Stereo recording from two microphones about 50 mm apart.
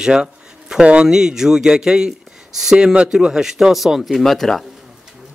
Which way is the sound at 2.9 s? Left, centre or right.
Centre.